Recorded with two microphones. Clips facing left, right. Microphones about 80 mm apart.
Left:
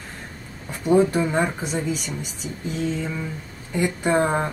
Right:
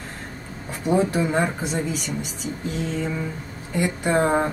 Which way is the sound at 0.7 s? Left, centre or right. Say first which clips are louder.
Left 3 dB; centre.